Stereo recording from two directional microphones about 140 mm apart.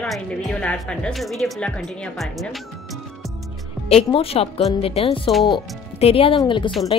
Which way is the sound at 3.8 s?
45° left (ahead or behind).